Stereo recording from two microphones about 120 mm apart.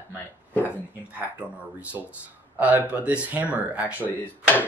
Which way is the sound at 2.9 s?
10° right (ahead or behind).